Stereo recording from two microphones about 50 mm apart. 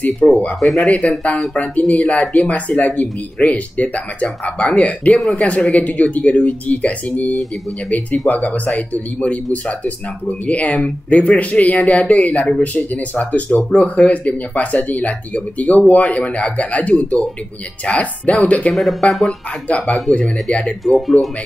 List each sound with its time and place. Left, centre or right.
0.2 s speech: left
0.6 s speech: centre
0.8 s speech: left
18.7 s speech: centre
19.7 s speech: left
20.4 s speech: centre
20.8 s speech: centre